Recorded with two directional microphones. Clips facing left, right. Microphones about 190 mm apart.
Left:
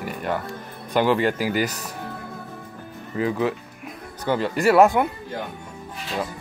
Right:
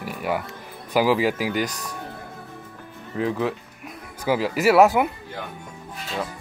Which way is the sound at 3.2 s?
Centre (ahead or behind).